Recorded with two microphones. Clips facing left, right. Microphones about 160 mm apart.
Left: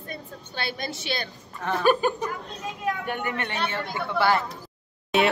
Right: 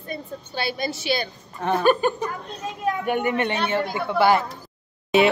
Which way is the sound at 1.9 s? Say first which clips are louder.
Right 1 dB; 5° left (ahead or behind).